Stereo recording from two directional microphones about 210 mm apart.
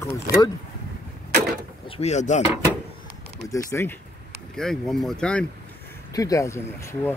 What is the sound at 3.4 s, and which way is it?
Speech, 15° left (ahead or behind).